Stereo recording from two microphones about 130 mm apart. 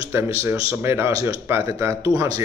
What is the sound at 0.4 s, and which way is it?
Speech, 20° right (ahead or behind).